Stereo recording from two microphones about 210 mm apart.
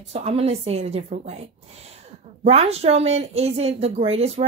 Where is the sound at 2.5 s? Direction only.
30° right (ahead or behind).